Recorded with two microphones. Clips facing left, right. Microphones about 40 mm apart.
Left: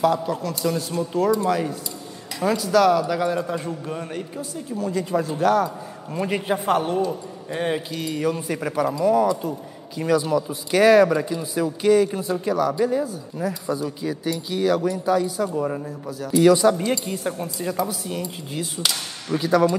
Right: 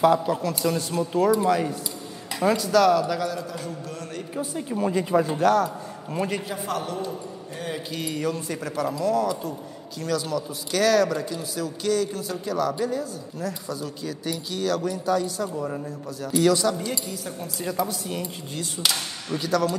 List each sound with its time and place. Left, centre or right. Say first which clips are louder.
0.0 s speech: right 1 dB; centre
3.2 s speech: left 5 dB; left
4.4 s speech: right 5 dB; right
5.4 s speech: left 3 dB; centre
6.4 s a man's voice: left 8 dB; left
7.9 s speech: left 3 dB; centre; by 12.5 s left
12.5 s speech: left 3 dB; centre
17.0 s a man's voice: left 6 dB; left
17.8 s speech: left 2 dB; centre
19.2 s speech: left 5 dB; centre